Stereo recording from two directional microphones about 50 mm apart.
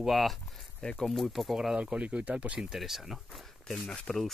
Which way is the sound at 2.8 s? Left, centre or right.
Centre.